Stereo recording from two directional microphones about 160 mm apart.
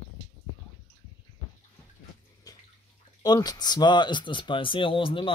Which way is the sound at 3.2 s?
25° left (ahead or behind).